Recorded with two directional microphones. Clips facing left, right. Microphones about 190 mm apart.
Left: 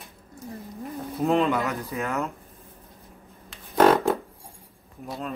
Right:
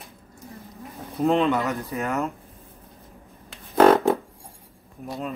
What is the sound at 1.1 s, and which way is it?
Speech, centre (ahead or behind).